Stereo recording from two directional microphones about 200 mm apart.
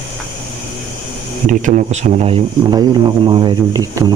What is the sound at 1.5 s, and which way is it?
Speech, 35° right (ahead or behind).